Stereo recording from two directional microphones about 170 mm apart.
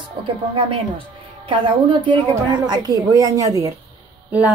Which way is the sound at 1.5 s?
25° right (ahead or behind).